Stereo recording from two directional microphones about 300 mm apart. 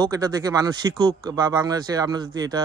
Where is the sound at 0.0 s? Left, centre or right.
Centre.